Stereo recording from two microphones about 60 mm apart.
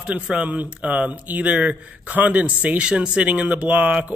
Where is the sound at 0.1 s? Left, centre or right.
Right.